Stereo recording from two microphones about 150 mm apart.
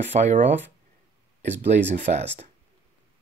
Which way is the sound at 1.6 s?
50° right (ahead or behind).